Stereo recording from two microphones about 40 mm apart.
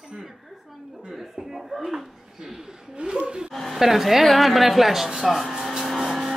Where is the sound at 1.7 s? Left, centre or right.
Centre.